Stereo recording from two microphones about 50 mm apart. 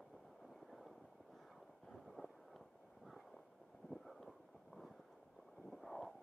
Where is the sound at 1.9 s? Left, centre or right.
Centre.